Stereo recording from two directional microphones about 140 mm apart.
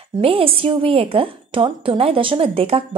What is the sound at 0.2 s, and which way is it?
A woman's voice, 45° right (ahead or behind).